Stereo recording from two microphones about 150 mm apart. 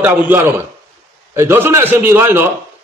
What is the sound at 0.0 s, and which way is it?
A man's voice, 15° right (ahead or behind).